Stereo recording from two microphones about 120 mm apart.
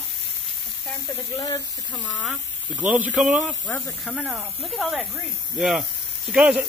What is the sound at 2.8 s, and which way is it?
Speech, 15° right (ahead or behind).